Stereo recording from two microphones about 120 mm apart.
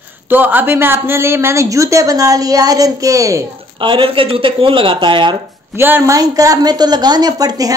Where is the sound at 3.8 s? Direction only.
45° right (ahead or behind).